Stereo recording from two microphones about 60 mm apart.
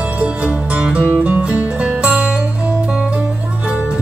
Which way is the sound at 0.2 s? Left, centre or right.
Right.